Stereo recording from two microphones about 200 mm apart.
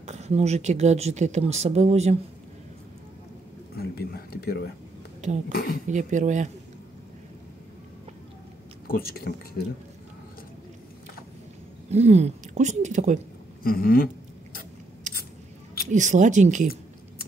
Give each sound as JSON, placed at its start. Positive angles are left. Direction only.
{"t": 0.0, "sound": "speech", "side_deg": -35}
{"t": 3.7, "sound": "a sound", "side_deg": 50}
{"t": 5.5, "sound": "speech", "side_deg": 50}
{"t": 5.9, "sound": "speech", "side_deg": -35}
{"t": 8.8, "sound": "speech", "side_deg": 50}
{"t": 11.9, "sound": "speech", "side_deg": -35}
{"t": 13.6, "sound": "a sound", "side_deg": 45}
{"t": 15.9, "sound": "speech", "side_deg": -40}